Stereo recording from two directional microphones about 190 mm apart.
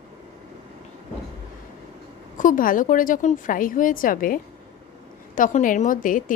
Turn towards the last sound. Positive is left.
turn(degrees=45)  # may be behind; listen again after turning